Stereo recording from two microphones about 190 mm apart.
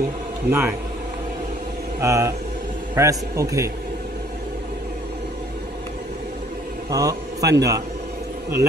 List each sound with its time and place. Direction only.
0.5 s a man's voice: 10° right (ahead or behind)
2.0 s a man's voice: 15° right (ahead or behind)
6.9 s mantra: 20° right (ahead or behind)
7.5 s a man's voice: 20° right (ahead or behind)